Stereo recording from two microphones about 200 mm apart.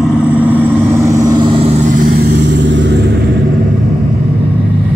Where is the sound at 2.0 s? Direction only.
55° right (ahead or behind).